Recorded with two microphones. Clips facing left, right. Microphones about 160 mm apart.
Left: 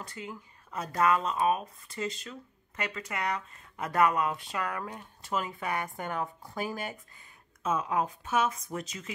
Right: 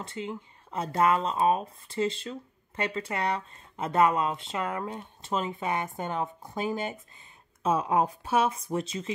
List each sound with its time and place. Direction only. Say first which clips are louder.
0.0 s speech: right 6 dB; 25° right (ahead or behind)